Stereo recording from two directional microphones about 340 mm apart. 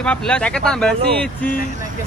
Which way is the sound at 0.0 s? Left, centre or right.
Centre.